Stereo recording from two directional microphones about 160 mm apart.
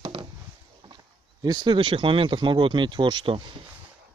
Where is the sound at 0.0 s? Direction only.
25° right (ahead or behind).